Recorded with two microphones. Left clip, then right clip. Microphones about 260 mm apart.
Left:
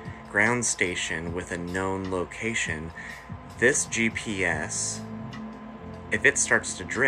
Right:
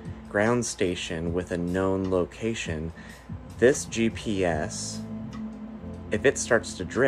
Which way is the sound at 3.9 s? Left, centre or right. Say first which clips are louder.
Left 1 dB; centre.